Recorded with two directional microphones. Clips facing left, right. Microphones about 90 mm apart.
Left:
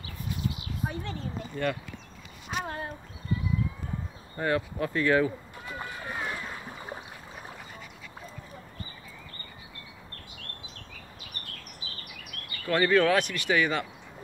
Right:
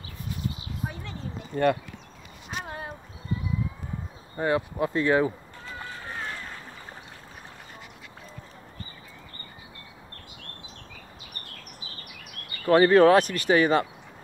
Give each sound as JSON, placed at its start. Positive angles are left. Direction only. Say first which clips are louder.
{"t": 1.5, "sound": "speech", "louder": "right 8 dB", "side_deg": -50}
{"t": 4.4, "sound": "speech", "louder": "right 3 dB", "side_deg": -15}
{"t": 5.7, "sound": "boat", "louder": "left 1 dB", "side_deg": 15}
{"t": 12.6, "sound": "speech", "louder": "right 7 dB", "side_deg": -35}